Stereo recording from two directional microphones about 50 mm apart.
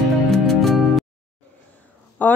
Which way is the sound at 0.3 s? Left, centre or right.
Centre.